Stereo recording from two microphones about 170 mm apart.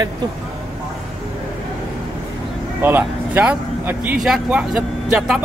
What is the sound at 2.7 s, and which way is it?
Speech, 10° right (ahead or behind).